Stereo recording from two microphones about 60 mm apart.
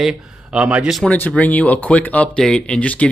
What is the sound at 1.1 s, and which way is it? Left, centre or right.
Speech, left.